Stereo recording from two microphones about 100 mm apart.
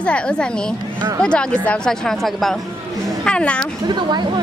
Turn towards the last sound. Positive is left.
turn(degrees=-50)  # may be behind; listen again after turning